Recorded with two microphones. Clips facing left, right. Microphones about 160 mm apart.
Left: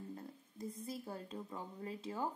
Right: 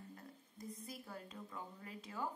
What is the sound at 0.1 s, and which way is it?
A woman's voice, 25° left (ahead or behind).